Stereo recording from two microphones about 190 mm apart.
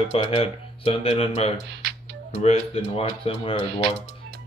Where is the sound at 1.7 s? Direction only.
60° right (ahead or behind).